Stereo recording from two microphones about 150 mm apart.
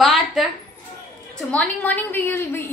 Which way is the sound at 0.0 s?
Centre (ahead or behind).